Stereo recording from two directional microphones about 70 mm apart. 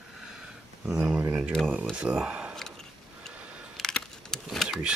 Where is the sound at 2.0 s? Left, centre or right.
Centre.